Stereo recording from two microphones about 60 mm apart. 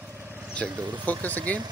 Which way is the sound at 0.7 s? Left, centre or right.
Right.